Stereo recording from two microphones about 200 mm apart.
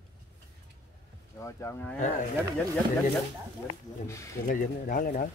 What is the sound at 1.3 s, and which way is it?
Speech, 15° left (ahead or behind).